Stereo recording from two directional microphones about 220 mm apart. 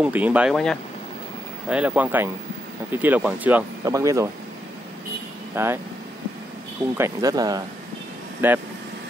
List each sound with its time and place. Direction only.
0.0 s speech: 5° right (ahead or behind)
5.5 s speech: 10° right (ahead or behind)
7.0 s speech: 15° right (ahead or behind)